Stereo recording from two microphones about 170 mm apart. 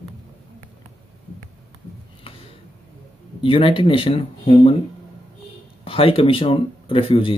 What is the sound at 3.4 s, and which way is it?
Speech, 30° left (ahead or behind).